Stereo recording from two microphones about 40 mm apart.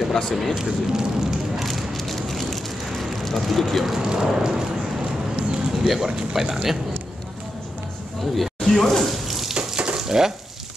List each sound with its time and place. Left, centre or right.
0.1 s speech: centre
0.6 s speech: centre
1.6 s rain on surface: centre
3.9 s speech: centre
5.9 s speech: centre
8.4 s speech: centre
9.1 s a sound: centre
9.6 s frying: right
9.9 s frying: centre